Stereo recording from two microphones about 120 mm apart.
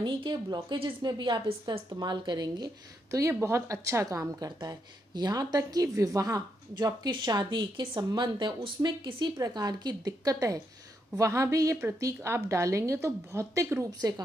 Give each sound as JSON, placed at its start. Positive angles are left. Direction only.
{"t": 0.0, "sound": "a woman's voice", "side_deg": -40}
{"t": 13.8, "sound": "a woman's voice", "side_deg": -35}